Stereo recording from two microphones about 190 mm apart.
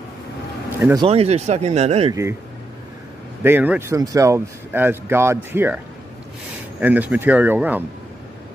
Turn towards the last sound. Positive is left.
turn(degrees=-10)  # may be behind; listen again after turning